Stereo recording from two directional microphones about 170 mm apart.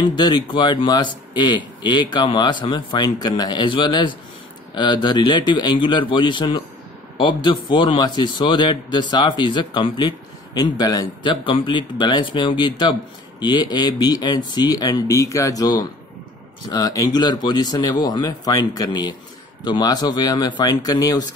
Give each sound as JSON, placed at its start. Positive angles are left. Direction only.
{"t": 0.0, "sound": "a man's voice", "side_deg": 25}